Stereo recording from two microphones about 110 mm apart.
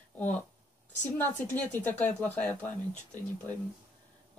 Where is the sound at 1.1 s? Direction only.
15° left (ahead or behind).